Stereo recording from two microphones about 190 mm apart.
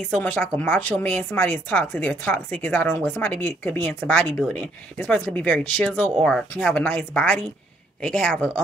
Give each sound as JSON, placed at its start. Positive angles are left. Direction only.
{"t": 0.2, "sound": "a woman's voice", "side_deg": 10}